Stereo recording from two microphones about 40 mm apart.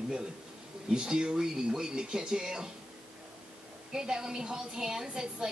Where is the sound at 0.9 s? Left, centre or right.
Right.